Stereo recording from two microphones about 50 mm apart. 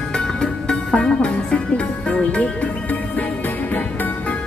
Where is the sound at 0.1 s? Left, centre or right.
Centre.